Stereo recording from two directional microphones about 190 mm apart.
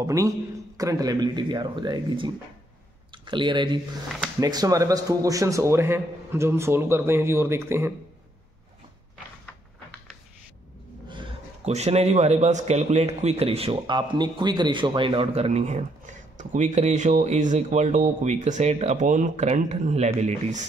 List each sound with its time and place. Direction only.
0.0 s a man's voice: 15° right (ahead or behind)
11.1 s speech: 30° right (ahead or behind)